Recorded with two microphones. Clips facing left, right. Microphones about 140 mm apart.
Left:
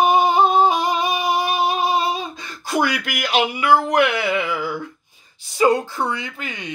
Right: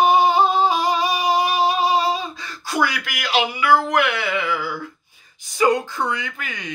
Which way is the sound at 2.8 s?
50° left (ahead or behind).